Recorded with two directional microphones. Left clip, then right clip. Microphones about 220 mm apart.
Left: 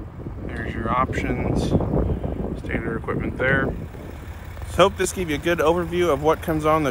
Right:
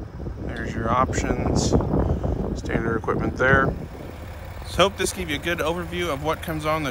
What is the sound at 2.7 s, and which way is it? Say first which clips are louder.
Speech: right 3 dB; 10° right (ahead or behind).